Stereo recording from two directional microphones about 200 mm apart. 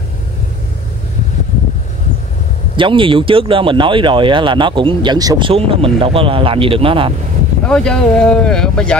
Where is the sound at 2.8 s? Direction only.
25° right (ahead or behind).